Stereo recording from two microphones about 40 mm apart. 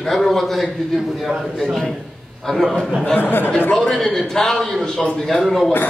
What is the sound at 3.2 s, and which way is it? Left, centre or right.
Speech, left.